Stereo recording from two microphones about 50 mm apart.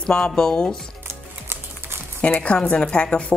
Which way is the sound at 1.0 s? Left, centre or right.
Right.